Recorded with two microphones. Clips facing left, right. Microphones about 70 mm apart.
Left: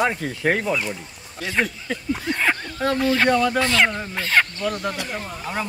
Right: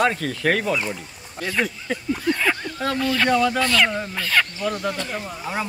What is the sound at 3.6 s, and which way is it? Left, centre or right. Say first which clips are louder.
Speech: left 1 dB; left.